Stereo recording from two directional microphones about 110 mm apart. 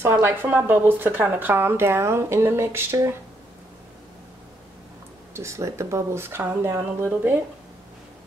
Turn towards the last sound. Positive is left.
turn(degrees=-20)  # may be behind; listen again after turning